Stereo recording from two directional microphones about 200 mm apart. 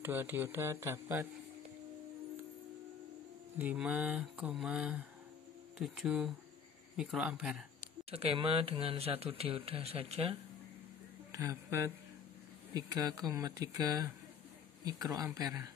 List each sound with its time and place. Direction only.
0.0 s speech: 10° right (ahead or behind)
3.5 s mantra: 5° right (ahead or behind)
8.1 s speech: 30° right (ahead or behind)
11.3 s speech: 15° right (ahead or behind)
15.0 s speech: 15° right (ahead or behind)